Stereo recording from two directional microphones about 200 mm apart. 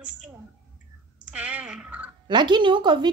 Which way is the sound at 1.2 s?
5° right (ahead or behind).